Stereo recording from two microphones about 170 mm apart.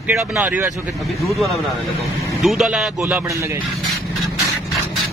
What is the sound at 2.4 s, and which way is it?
Speech, centre (ahead or behind).